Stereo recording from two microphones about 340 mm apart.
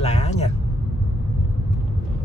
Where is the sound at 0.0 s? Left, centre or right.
Centre.